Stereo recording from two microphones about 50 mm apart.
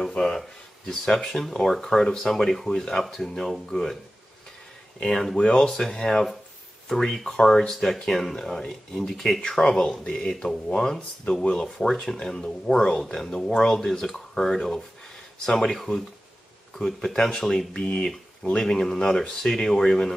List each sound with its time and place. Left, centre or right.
0.0 s speech: centre
5.4 s speech: centre
5.7 s speech: centre
11.6 s speech: centre